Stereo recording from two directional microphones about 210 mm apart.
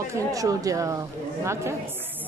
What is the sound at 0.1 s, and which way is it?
Speech, 15° right (ahead or behind).